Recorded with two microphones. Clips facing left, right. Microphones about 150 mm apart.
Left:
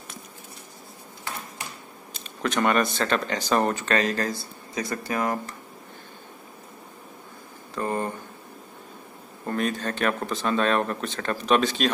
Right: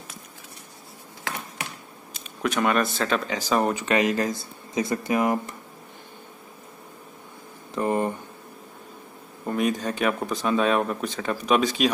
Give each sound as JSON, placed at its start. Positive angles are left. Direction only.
{"t": 2.1, "sound": "speech", "side_deg": -5}
{"t": 7.7, "sound": "speech", "side_deg": -15}
{"t": 9.5, "sound": "speech", "side_deg": -10}